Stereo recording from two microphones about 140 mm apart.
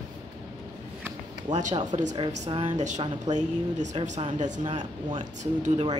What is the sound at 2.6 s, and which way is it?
Speech, 60° right (ahead or behind).